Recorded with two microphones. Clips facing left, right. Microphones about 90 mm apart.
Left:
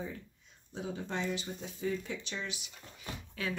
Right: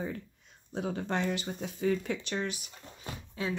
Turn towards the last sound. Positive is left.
turn(degrees=-25)  # may be behind; listen again after turning